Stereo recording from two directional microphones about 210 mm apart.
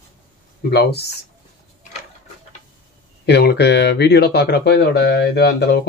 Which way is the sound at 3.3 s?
50° left (ahead or behind).